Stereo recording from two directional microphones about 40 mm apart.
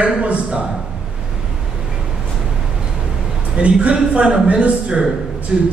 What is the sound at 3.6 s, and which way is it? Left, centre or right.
A man's voice, right.